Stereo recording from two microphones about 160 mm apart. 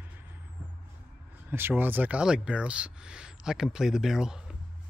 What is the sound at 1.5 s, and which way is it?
Speech, 15° right (ahead or behind).